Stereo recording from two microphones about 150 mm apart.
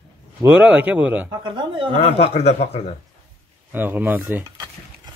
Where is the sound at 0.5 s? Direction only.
10° right (ahead or behind).